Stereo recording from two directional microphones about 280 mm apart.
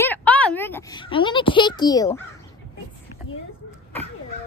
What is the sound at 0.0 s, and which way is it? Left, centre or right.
Speech, centre.